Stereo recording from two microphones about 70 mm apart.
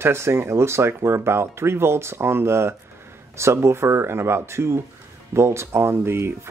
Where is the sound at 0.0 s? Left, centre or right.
Right.